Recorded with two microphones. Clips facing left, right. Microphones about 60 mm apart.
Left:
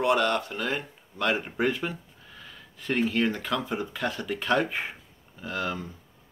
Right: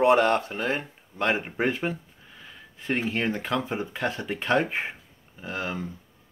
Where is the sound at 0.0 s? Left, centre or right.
Right.